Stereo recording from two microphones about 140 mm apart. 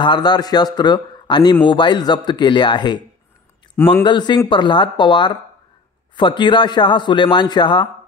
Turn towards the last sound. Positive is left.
turn(degrees=35)  # may be behind; listen again after turning